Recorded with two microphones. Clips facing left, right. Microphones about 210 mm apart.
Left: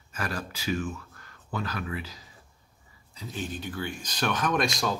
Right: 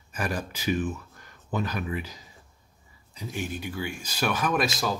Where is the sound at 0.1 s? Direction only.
15° right (ahead or behind).